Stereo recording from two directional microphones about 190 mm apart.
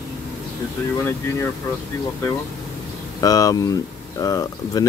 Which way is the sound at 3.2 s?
20° left (ahead or behind).